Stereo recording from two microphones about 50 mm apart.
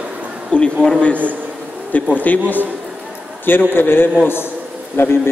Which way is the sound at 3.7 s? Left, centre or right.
Left.